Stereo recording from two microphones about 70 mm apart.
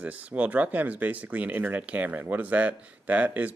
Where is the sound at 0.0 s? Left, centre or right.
Right.